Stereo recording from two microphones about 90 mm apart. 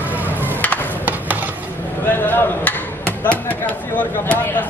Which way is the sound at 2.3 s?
20° left (ahead or behind).